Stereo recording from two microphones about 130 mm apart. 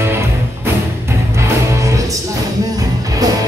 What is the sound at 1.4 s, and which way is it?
Music, 25° right (ahead or behind).